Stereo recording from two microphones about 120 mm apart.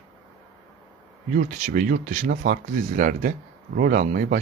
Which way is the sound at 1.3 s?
85° right.